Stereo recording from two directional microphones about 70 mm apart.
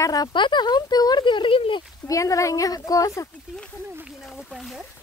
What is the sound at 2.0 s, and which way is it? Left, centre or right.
Speech, left.